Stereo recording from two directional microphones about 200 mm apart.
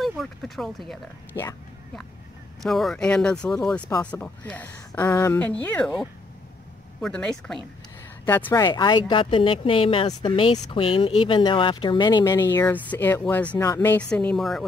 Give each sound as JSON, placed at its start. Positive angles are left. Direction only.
{"t": 0.0, "sound": "speech", "side_deg": 0}
{"t": 1.3, "sound": "speech", "side_deg": 15}
{"t": 2.6, "sound": "speech", "side_deg": 0}
{"t": 8.6, "sound": "speech", "side_deg": 20}